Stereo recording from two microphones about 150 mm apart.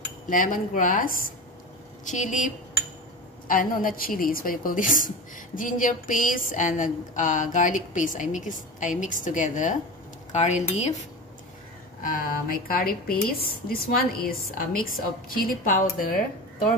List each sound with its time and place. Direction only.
0.3 s a woman's voice: 65° left (ahead or behind)
12.0 s a woman's voice: 75° left (ahead or behind)